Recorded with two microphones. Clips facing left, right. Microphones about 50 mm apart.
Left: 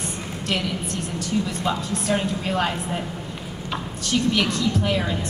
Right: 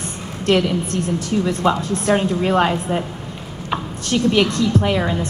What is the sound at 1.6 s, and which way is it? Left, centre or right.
A woman's voice, right.